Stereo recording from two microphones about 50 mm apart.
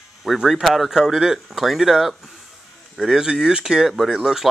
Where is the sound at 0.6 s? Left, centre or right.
Centre.